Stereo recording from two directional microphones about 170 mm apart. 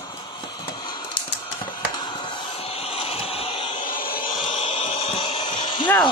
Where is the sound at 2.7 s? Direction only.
35° left (ahead or behind).